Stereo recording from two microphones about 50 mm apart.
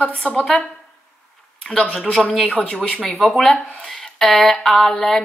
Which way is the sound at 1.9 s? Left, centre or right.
Centre.